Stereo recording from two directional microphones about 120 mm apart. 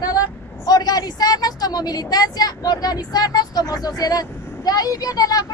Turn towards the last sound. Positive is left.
turn(degrees=30)  # may be behind; listen again after turning